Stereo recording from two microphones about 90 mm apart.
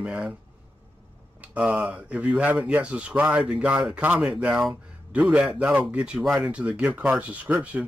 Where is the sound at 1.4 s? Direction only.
15° right (ahead or behind).